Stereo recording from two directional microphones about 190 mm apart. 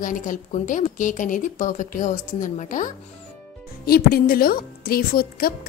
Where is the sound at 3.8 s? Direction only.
50° left (ahead or behind).